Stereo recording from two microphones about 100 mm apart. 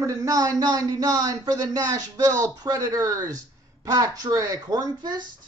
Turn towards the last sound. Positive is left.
turn(degrees=-50)  # may be behind; listen again after turning